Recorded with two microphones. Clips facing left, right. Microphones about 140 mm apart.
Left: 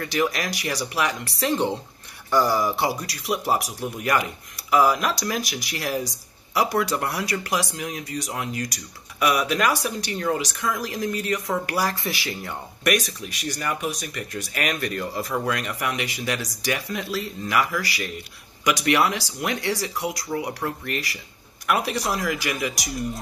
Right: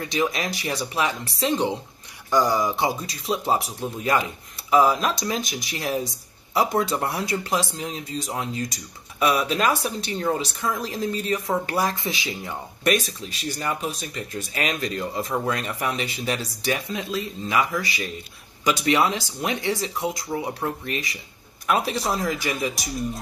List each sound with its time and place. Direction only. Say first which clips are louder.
0.0 s speech: even; 20° right (ahead or behind)
20.8 s speech: even; 60° left (ahead or behind)
21.6 s speech: right 1 dB; 25° right (ahead or behind)